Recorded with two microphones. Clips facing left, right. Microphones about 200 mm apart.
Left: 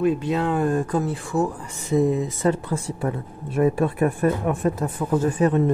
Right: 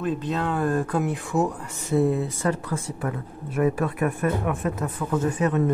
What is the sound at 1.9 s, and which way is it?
Speech, 15° left (ahead or behind).